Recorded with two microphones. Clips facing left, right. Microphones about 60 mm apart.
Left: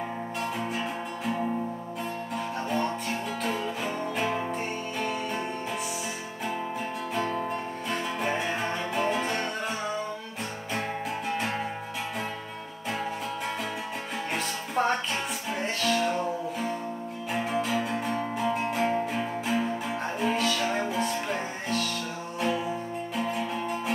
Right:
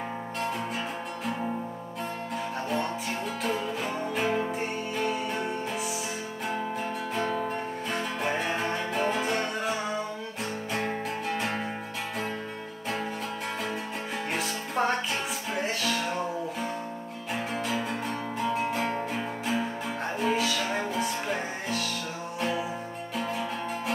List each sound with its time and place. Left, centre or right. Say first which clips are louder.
2.7 s music: left 2 dB; centre
7.2 s music: left 1 dB; centre
11.3 s music: left 1 dB; centre
14.3 s music: left 2 dB; centre